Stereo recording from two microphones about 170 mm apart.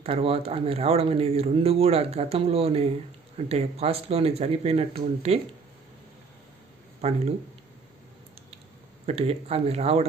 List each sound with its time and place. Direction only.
0.0 s speech: 35° right (ahead or behind)
7.0 s speech: 40° right (ahead or behind)
9.0 s speech: 40° right (ahead or behind)